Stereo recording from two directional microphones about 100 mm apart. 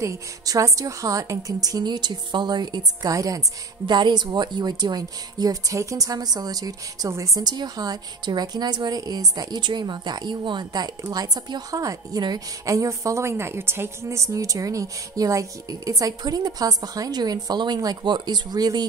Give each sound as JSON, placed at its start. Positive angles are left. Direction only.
{"t": 0.0, "sound": "a woman's voice", "side_deg": -30}
{"t": 3.8, "sound": "a woman's voice", "side_deg": -50}